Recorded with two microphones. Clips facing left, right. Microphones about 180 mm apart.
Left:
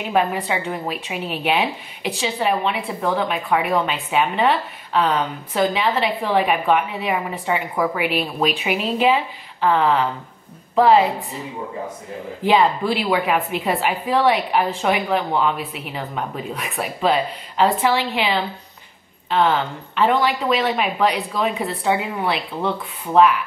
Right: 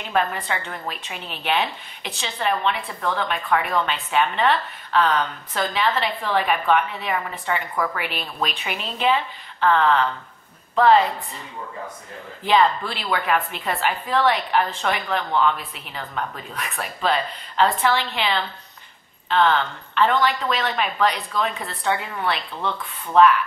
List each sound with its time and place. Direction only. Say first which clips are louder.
0.0 s speech: left 4 dB; 5° left (ahead or behind)
12.4 s speech: left 2 dB; 10° left (ahead or behind)
22.6 s speech: left 4 dB; 35° left (ahead or behind)
23.1 s speech: left 1 dB; 5° left (ahead or behind)